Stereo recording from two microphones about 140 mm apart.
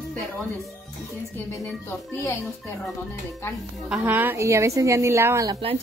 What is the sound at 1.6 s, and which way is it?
Speech, 15° left (ahead or behind).